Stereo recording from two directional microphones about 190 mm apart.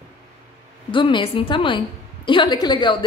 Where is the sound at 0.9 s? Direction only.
25° left (ahead or behind).